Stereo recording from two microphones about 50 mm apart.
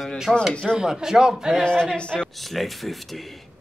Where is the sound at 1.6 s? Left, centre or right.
Centre.